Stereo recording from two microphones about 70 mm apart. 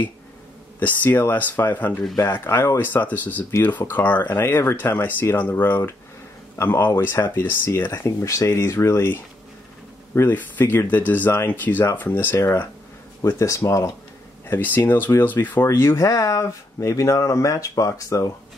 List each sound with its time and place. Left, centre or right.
0.7 s speech: left
2.1 s speech: left
2.4 s speech: left
4.4 s speech: left
14.5 s speech: left